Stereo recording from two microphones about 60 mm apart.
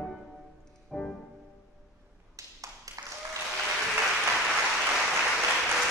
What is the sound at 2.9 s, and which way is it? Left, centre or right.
Applause, right.